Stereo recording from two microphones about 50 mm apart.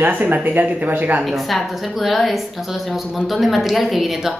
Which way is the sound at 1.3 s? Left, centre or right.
Centre.